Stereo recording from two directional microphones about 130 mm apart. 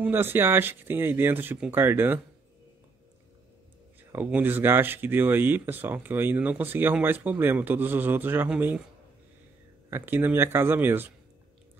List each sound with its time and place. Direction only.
0.0 s speech: 15° right (ahead or behind)
4.1 s speech: 15° right (ahead or behind)
9.8 s speech: 15° right (ahead or behind)